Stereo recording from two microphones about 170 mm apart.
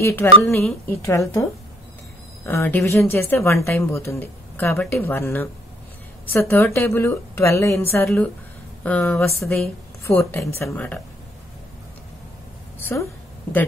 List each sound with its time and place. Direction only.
0.0 s a woman's voice: 15° left (ahead or behind)
10.0 s a woman's voice: 15° left (ahead or behind)
12.7 s a sound: 15° left (ahead or behind)